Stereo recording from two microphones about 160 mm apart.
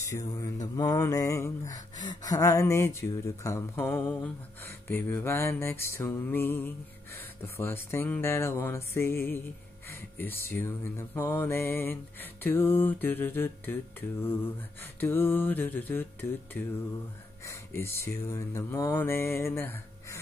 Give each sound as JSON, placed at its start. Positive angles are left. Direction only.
{"t": 0.0, "sound": "mantra", "side_deg": 20}
{"t": 15.0, "sound": "mantra", "side_deg": 15}
{"t": 17.5, "sound": "mantra", "side_deg": 15}